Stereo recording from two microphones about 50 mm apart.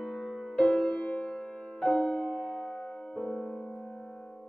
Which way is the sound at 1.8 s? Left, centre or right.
Centre.